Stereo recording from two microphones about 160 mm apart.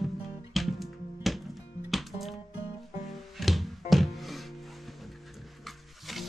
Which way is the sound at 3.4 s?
Centre (ahead or behind).